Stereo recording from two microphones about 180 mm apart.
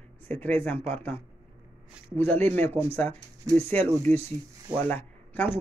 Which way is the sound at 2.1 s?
10° left (ahead or behind).